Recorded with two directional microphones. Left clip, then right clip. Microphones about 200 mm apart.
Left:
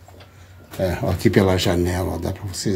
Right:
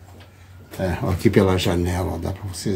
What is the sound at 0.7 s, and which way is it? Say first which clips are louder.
Speech: left 3 dB; 15° left (ahead or behind).